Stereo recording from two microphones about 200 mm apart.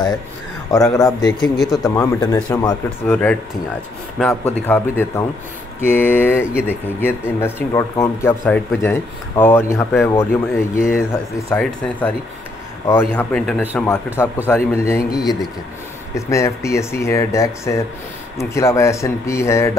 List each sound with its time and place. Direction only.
0.9 s speech: 15° left (ahead or behind)
1.4 s speech: centre (ahead or behind)
2.0 s speech: 15° left (ahead or behind)
16.2 s speech: 15° left (ahead or behind)